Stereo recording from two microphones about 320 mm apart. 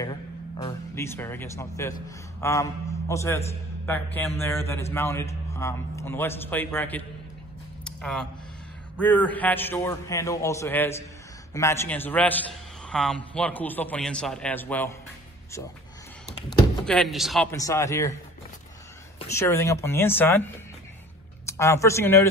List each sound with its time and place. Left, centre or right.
0.0 s a man's voice: centre
7.8 s a sound: centre
8.9 s a man's voice: centre
16.4 s a man's voice: centre
19.1 s a man's voice: centre